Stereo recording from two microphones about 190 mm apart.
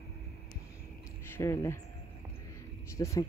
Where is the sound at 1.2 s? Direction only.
15° left (ahead or behind).